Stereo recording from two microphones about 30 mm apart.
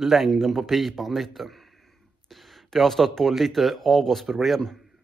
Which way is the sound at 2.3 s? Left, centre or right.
Centre.